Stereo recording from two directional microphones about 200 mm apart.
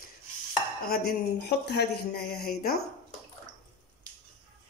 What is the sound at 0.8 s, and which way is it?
Speech, 50° left (ahead or behind).